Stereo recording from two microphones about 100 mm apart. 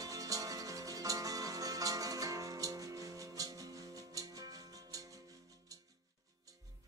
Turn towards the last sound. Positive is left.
turn(degrees=-35)  # may be behind; listen again after turning